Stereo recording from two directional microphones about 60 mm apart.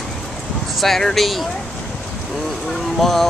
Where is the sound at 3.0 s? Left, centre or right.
Centre.